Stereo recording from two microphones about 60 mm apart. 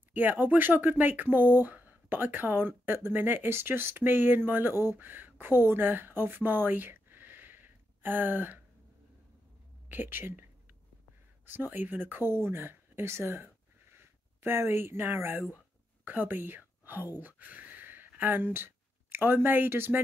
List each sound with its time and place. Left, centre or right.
0.1 s speech: right
9.8 s speech: right
11.4 s speech: right
15.5 s whispering: right